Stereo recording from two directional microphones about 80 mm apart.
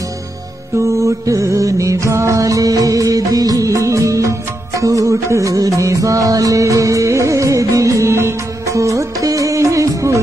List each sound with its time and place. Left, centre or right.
1.0 s music: right